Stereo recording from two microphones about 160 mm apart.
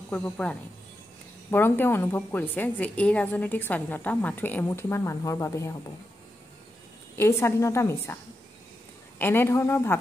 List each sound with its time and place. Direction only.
0.1 s a woman's voice: 10° left (ahead or behind)
7.2 s a woman's voice: 15° left (ahead or behind)
9.2 s a woman's voice: 15° left (ahead or behind)